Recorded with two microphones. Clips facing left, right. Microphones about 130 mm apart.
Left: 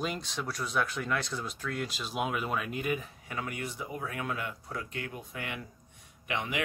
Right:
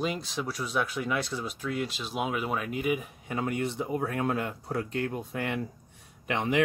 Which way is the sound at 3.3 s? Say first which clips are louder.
Right 7 dB; 25° right (ahead or behind).